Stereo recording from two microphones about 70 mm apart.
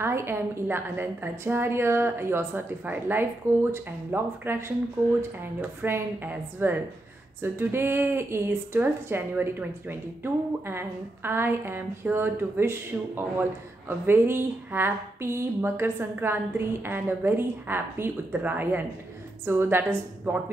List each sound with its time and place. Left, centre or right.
0.0 s a woman's voice: right